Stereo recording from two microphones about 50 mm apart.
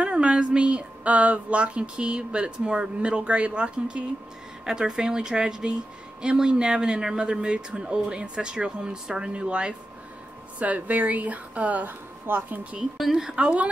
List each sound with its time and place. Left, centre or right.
0.0 s a woman's voice: right
10.6 s a woman's voice: right
12.9 s speech: centre
13.4 s speech: right